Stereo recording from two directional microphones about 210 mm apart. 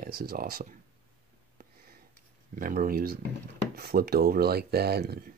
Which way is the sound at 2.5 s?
40° right (ahead or behind).